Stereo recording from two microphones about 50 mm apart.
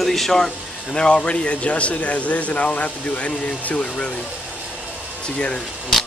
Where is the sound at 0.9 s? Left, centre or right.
Centre.